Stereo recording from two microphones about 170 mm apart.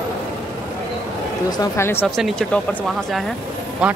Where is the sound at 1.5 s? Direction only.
15° left (ahead or behind).